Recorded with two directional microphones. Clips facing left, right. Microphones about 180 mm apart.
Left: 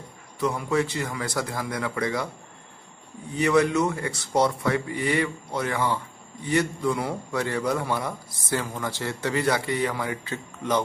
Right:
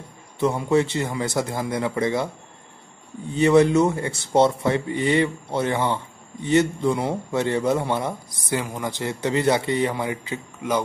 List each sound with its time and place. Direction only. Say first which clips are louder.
0.4 s a man's voice: right 5 dB; 25° right (ahead or behind)
3.3 s a man's voice: right 5 dB; 25° right (ahead or behind); by 10.8 s 10° right (ahead or behind)